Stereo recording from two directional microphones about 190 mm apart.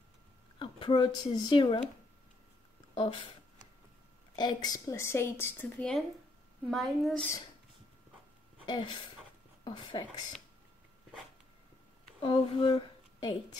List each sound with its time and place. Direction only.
0.6 s speech: 25° left (ahead or behind)
2.9 s a sound: 25° left (ahead or behind)
4.4 s a woman's voice: 20° left (ahead or behind); by 7.2 s centre (ahead or behind)
8.6 s a woman's voice: 25° left (ahead or behind)
12.2 s speech: 30° left (ahead or behind)